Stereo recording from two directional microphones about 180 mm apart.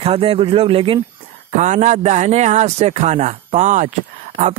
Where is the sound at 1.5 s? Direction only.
45° right (ahead or behind).